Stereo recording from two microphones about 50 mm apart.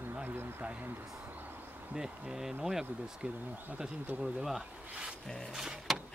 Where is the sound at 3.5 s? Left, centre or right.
Right.